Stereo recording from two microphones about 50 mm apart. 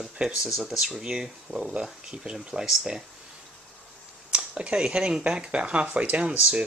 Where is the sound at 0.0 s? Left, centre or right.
Centre.